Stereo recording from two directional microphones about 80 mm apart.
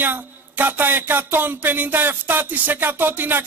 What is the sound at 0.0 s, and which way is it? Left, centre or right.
Speech, right.